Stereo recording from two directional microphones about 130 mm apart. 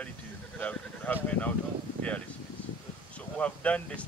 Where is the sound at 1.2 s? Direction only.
10° left (ahead or behind).